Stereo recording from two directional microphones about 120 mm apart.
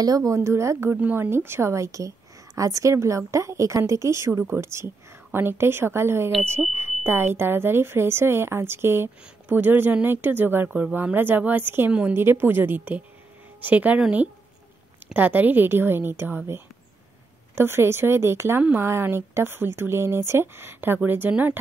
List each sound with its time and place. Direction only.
0.0 s a woman's voice: 30° right (ahead or behind); by 21.5 s 15° right (ahead or behind)